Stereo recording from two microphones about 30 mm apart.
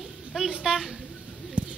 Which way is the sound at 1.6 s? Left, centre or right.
Right.